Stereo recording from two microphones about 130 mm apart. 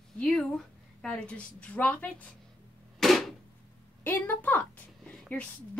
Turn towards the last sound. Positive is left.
turn(degrees=10)  # may be behind; listen again after turning